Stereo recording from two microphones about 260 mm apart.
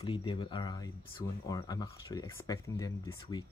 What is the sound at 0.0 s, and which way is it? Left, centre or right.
Speech, centre.